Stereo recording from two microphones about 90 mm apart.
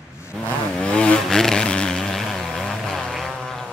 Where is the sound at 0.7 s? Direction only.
10° left (ahead or behind).